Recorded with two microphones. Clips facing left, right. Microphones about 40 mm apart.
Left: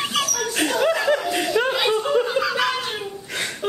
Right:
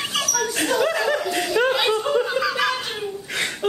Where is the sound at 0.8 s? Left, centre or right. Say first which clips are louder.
Left 4 dB; centre.